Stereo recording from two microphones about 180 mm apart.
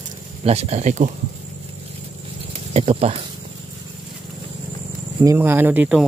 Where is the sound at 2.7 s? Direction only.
35° right (ahead or behind).